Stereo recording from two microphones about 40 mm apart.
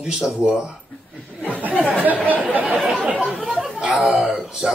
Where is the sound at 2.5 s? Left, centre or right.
Right.